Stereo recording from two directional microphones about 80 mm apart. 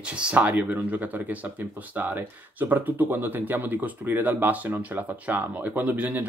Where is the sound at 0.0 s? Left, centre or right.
Centre.